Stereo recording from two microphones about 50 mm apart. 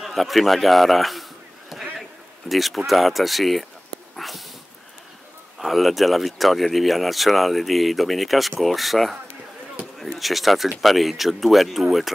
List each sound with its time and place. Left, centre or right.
0.0 s speech: centre
1.7 s a sound: centre
2.9 s speech: centre
4.2 s dog: centre
5.6 s speech: centre